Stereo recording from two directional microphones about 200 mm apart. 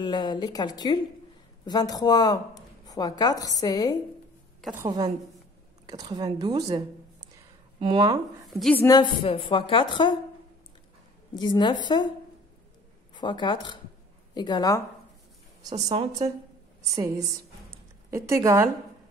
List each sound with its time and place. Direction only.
0.0 s a woman's voice: 20° left (ahead or behind)
4.7 s speech: 20° right (ahead or behind)
8.5 s a woman's voice: centre (ahead or behind)
8.8 s a woman's voice: 20° left (ahead or behind)
11.3 s a woman's voice: 20° left (ahead or behind)
13.1 s a woman's voice: 25° left (ahead or behind)
15.6 s speech: 25° right (ahead or behind)
16.9 s a woman's voice: 15° right (ahead or behind)